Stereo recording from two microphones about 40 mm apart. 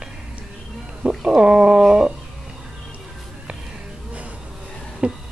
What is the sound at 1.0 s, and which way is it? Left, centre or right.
Roaring cats, right.